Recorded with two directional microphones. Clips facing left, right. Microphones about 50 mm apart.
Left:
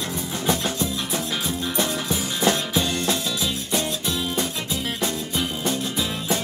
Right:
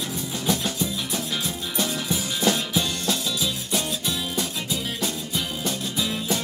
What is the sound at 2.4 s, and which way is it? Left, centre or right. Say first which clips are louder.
Music: left 2 dB; left.